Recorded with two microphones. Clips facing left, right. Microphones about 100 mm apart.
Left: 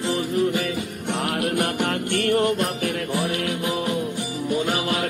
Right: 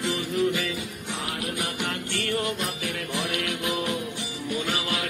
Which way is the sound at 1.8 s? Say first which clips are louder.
Left 7 dB; 50° left (ahead or behind).